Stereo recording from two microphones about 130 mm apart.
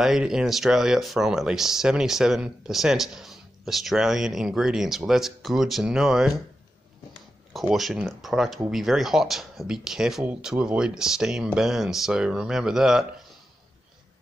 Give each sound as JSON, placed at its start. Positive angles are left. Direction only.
{"t": 0.0, "sound": "speech", "side_deg": -5}
{"t": 7.7, "sound": "speech", "side_deg": 0}